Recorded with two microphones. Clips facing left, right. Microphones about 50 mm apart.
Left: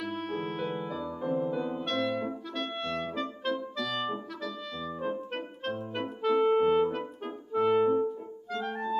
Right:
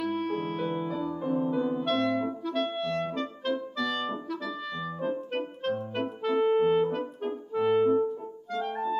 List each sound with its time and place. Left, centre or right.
0.0 s music: centre
1.3 s music: centre
1.6 s music: centre